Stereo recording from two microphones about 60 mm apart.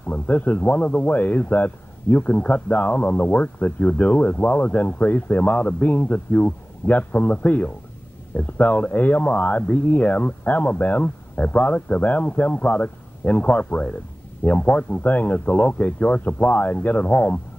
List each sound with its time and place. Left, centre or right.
0.0 s a man's voice: left